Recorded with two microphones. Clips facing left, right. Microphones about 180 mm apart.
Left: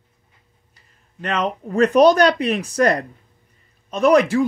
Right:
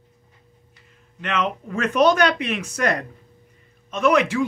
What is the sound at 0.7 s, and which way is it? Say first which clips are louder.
Speech: left 3 dB; 35° left (ahead or behind).